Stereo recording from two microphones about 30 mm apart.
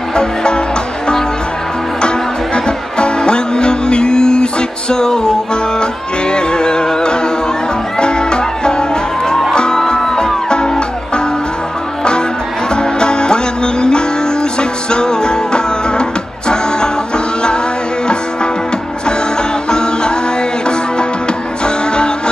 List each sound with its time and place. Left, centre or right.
0.1 s music: left
2.0 s music: left
19.7 s music: left
21.6 s music: left